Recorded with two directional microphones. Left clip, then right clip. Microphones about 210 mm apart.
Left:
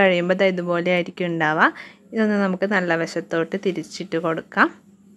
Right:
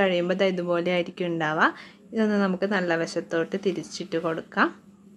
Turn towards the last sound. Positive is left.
turn(degrees=25)  # may be behind; listen again after turning